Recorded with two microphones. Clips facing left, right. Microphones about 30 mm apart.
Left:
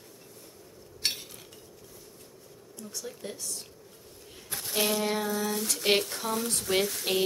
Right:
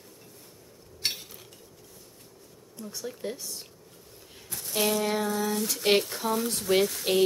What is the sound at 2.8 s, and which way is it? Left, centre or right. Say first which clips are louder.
Speech: right 4 dB; centre.